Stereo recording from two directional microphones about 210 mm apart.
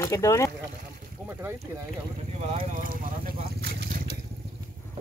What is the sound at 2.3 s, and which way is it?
Vehicle, 30° right (ahead or behind).